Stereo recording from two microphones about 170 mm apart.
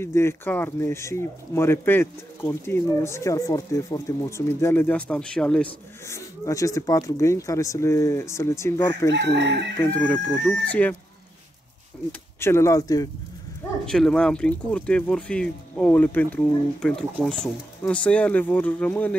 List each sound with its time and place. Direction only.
0.0 s speech: 15° left (ahead or behind)
6.0 s speech: 15° left (ahead or behind)
9.1 s chicken: 90° right
9.8 s speech: 10° left (ahead or behind)
12.1 s speech: 15° left (ahead or behind)
13.8 s speech: 5° left (ahead or behind)